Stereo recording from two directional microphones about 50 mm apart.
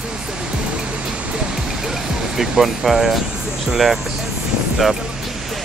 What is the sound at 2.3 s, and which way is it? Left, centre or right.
Speech, centre.